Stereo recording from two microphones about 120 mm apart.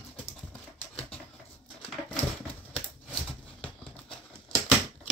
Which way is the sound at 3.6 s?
10° left (ahead or behind).